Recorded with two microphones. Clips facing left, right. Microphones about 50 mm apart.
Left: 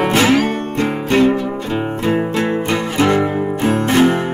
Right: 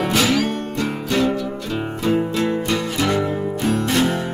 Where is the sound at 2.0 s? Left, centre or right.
Left.